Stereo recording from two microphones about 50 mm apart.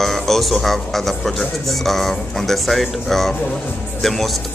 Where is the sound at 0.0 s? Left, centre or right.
Centre.